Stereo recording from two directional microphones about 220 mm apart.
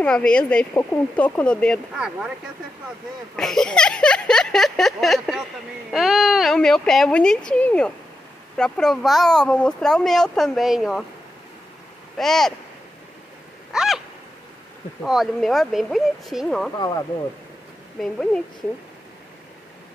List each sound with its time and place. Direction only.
0.0 s speech: 5° left (ahead or behind)
3.3 s speech: centre (ahead or behind)
12.2 s speech: centre (ahead or behind)
13.7 s a sound: centre (ahead or behind)
15.0 s speech: centre (ahead or behind)
16.7 s speech: 20° left (ahead or behind)
18.0 s speech: 5° left (ahead or behind)